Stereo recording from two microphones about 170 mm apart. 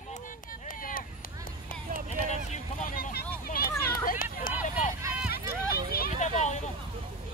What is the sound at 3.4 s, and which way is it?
Children playing, 60° left (ahead or behind).